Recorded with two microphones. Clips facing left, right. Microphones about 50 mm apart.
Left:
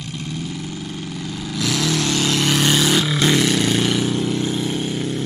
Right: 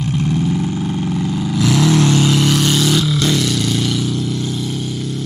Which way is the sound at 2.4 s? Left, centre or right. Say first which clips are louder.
Right 2 dB; centre.